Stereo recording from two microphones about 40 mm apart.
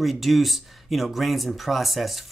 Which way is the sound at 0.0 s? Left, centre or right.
Centre.